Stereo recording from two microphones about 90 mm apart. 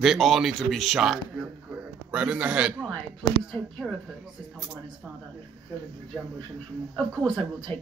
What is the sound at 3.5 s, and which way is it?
Speech, 5° left (ahead or behind).